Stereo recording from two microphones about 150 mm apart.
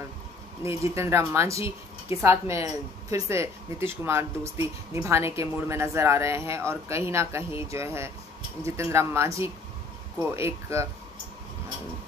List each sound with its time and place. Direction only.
0.7 s speech: 20° right (ahead or behind)